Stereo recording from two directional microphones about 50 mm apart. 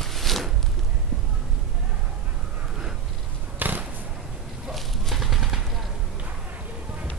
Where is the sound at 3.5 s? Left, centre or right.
Right.